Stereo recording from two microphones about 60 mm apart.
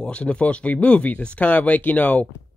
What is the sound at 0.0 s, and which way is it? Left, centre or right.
Speech, centre.